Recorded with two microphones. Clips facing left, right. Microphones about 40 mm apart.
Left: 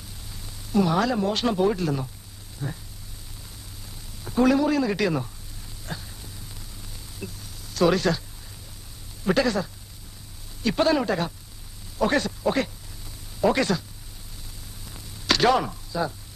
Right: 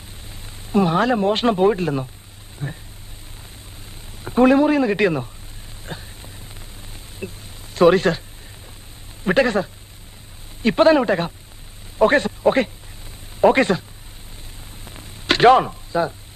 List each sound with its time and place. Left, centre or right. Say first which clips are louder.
0.3 s a man's voice: right 5 dB; right
4.2 s a man's voice: right 6 dB; right
5.9 s a sound: right 2 dB; right
9.2 s a man's voice: right 5 dB; right
14.9 s a sound: right 4 dB; right
15.6 s chopping: right 6 dB; right